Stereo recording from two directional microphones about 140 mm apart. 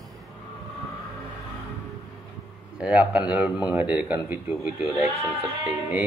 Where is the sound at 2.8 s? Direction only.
10° right (ahead or behind).